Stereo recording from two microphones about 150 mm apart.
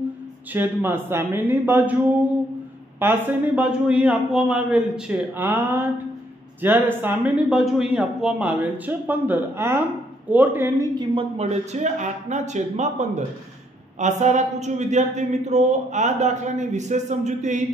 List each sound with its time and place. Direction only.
0.5 s a man's voice: 15° right (ahead or behind)
3.0 s a man's voice: 10° right (ahead or behind)
11.0 s a man's voice: 40° right (ahead or behind)